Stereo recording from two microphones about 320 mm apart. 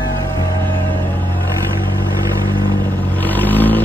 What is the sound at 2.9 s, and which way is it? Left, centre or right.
Vehicle, centre.